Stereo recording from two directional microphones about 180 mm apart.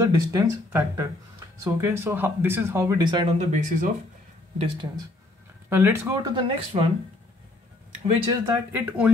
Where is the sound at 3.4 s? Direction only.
40° right (ahead or behind).